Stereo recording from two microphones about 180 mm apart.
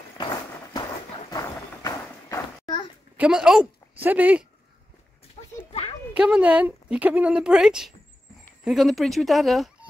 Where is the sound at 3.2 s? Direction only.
5° right (ahead or behind).